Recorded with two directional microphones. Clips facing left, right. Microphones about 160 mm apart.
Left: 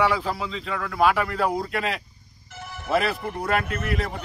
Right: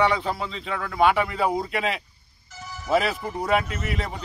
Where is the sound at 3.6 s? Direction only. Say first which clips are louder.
Left 3 dB; 60° left (ahead or behind).